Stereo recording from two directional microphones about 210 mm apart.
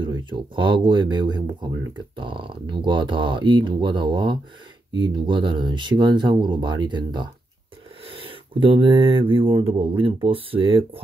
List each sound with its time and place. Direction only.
0.0 s speech: 25° right (ahead or behind)